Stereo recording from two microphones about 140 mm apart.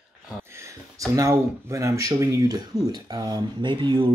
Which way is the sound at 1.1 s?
20° right (ahead or behind).